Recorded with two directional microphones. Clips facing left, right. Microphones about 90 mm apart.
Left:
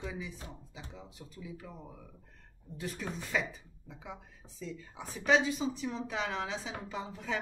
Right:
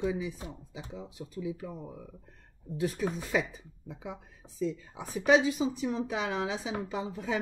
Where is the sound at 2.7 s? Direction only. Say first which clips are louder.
Right 8 dB; 10° right (ahead or behind).